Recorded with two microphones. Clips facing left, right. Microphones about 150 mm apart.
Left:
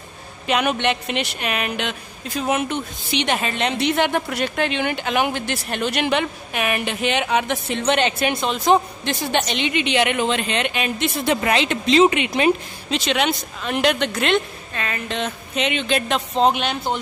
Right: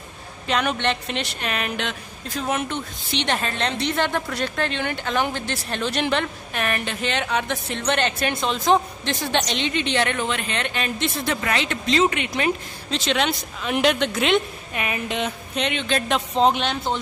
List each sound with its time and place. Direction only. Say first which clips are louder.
0.5 s a woman's voice: left 3 dB; 10° left (ahead or behind)
10.2 s speech: left 5 dB; 25° left (ahead or behind)
11.2 s speech: left 7 dB; 20° left (ahead or behind)
13.0 s speech: left 1 dB; centre (ahead or behind)
14.7 s speech: right 1 dB; 15° right (ahead or behind); by 17.0 s 5° left (ahead or behind)